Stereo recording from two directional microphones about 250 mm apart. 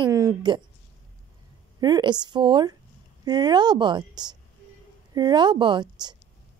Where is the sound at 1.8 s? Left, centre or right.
Centre.